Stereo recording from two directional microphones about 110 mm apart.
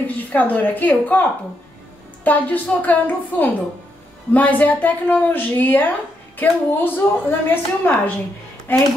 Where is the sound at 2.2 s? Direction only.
15° left (ahead or behind).